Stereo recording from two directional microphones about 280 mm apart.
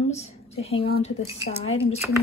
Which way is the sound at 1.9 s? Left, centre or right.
Centre.